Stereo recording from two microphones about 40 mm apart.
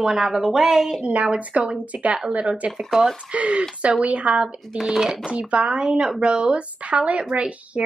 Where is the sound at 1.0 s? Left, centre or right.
Right.